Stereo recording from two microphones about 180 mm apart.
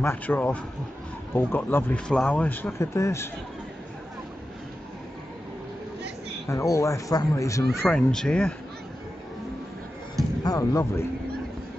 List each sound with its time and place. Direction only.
0.0 s speech: 10° left (ahead or behind)
6.5 s speech: 15° left (ahead or behind)
10.4 s speech: 20° left (ahead or behind)